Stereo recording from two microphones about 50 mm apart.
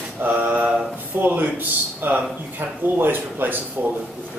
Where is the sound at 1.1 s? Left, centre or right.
Right.